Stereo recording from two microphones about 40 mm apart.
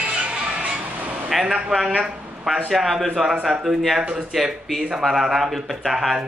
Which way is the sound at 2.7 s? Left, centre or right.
Centre.